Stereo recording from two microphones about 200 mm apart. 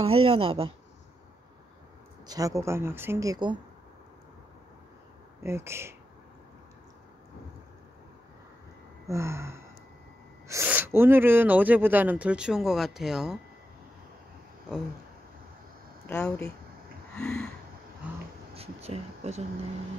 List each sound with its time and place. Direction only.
0.0 s speech: 25° right (ahead or behind)
2.2 s speech: 15° right (ahead or behind)
5.4 s speech: 10° right (ahead or behind)
9.0 s speech: 15° right (ahead or behind)
16.1 s speech: 15° left (ahead or behind)
17.1 s a sound: 5° left (ahead or behind)
18.5 s speech: 30° right (ahead or behind)